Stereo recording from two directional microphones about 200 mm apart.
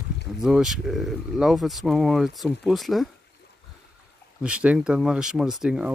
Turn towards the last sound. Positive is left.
turn(degrees=-5)  # may be behind; listen again after turning